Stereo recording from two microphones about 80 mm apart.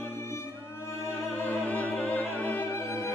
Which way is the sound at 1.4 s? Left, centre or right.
Centre.